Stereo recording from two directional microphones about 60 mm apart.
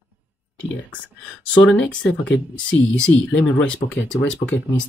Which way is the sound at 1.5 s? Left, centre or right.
Left.